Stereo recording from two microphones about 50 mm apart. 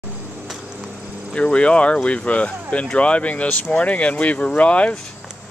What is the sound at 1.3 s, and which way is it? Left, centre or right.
Speech, left.